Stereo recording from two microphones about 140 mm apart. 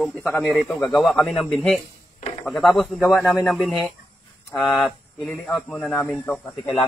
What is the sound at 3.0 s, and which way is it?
Speech, 15° left (ahead or behind).